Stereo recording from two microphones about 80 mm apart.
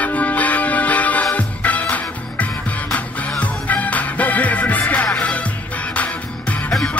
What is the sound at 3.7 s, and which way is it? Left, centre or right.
Music, centre.